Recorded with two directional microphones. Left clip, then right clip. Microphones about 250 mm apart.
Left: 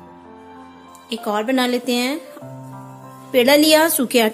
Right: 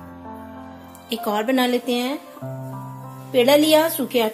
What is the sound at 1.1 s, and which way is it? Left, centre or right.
Speech, centre.